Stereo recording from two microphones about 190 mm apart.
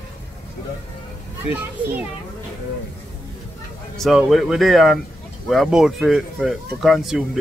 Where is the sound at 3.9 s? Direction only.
Centre (ahead or behind).